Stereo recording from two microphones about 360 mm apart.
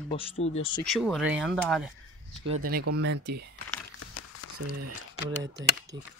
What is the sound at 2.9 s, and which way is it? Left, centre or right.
Speech, right.